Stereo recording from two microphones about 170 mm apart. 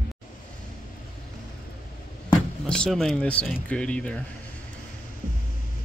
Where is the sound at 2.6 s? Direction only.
5° left (ahead or behind).